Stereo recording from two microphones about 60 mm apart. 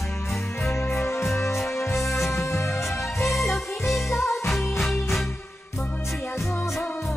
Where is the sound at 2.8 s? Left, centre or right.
Centre.